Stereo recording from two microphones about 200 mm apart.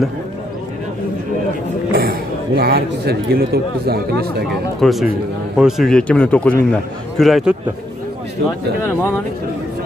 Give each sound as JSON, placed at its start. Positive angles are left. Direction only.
{"t": 1.9, "sound": "speech", "side_deg": -50}
{"t": 4.7, "sound": "a man's voice", "side_deg": 0}